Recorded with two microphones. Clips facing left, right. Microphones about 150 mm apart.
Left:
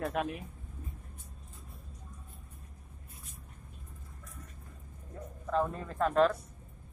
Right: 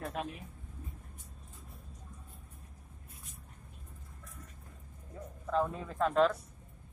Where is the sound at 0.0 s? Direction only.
70° left (ahead or behind).